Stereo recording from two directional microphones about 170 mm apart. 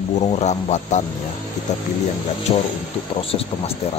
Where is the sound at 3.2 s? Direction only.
35° left (ahead or behind).